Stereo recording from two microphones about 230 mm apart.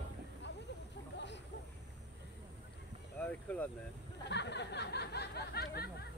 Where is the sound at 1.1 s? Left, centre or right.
Left.